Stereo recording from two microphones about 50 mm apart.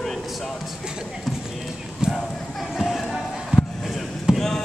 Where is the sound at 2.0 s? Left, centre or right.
Centre.